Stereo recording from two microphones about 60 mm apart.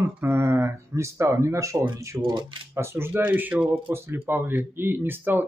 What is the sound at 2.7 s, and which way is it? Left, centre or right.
Speech, right.